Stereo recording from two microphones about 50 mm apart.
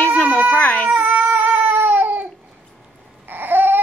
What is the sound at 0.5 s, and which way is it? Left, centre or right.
Speech, left.